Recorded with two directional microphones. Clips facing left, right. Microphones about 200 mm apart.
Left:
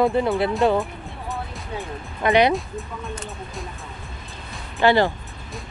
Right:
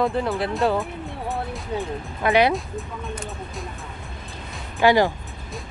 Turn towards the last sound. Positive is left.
turn(degrees=-10)  # may be behind; listen again after turning